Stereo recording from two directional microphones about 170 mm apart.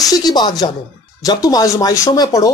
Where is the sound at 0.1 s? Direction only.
25° left (ahead or behind).